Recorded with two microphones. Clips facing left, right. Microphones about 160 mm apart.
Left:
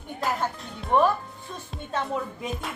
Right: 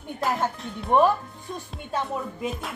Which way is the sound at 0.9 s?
15° right (ahead or behind).